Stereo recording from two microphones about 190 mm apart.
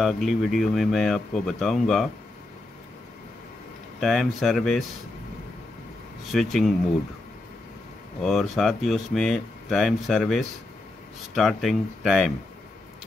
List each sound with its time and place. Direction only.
0.0 s speech: centre (ahead or behind)
4.0 s speech: centre (ahead or behind)
6.3 s speech: centre (ahead or behind)
8.2 s speech: centre (ahead or behind)